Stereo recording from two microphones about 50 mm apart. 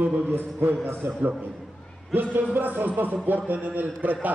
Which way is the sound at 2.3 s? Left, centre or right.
Right.